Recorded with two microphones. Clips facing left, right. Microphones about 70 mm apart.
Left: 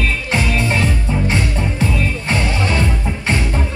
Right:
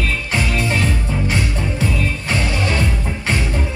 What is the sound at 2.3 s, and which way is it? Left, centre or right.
Music, left.